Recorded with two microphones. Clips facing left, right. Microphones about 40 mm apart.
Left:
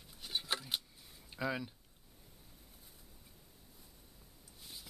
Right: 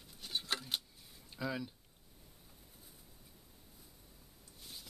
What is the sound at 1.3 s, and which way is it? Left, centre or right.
Speech, centre.